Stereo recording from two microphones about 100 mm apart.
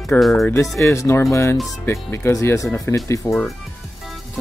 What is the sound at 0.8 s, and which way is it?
Speech, 30° left (ahead or behind).